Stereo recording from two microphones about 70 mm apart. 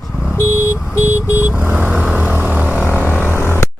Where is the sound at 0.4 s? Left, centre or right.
Left.